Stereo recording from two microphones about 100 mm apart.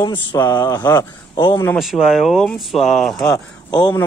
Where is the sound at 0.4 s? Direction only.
40° left (ahead or behind).